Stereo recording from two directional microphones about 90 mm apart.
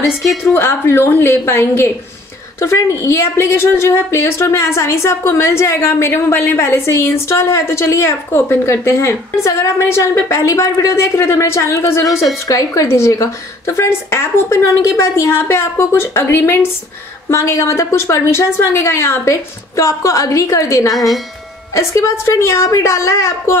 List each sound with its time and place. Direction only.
0.1 s a woman's voice: 5° right (ahead or behind)
0.5 s a woman's voice: 30° left (ahead or behind)
20.9 s a woman's voice: centre (ahead or behind)
21.7 s a woman's voice: 30° left (ahead or behind)